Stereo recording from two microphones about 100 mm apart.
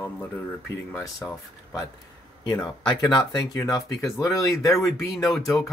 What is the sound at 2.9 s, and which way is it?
Speech, 45° left (ahead or behind).